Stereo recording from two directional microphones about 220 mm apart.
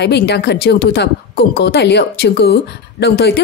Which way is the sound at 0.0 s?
50° left (ahead or behind).